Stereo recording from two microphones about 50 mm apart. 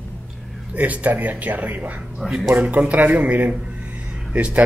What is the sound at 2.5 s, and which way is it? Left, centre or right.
A man's voice, right.